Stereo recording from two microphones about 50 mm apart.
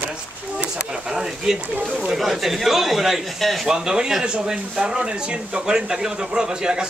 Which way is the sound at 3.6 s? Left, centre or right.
Centre.